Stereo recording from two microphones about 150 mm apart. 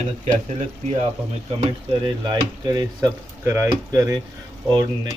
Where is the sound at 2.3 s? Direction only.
25° right (ahead or behind).